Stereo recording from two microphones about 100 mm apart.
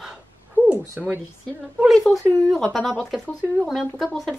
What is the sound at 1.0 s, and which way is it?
Speech, 5° right (ahead or behind).